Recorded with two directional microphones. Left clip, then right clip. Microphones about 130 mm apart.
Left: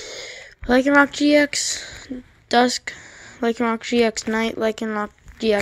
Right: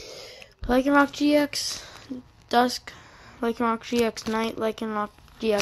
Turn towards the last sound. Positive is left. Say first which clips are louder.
# left 5 dB
turn(degrees=35)  # may be behind; listen again after turning